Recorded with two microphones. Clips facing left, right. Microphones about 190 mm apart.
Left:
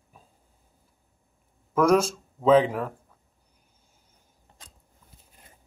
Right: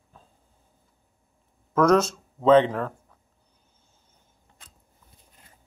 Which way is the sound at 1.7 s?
10° left (ahead or behind).